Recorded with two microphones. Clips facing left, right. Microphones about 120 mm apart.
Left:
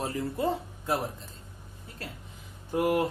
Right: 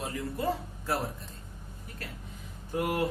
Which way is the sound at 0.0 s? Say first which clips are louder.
Left 4 dB; 35° left (ahead or behind).